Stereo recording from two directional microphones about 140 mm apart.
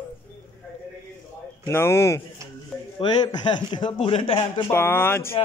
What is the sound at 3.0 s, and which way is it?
A man's voice, 30° left (ahead or behind).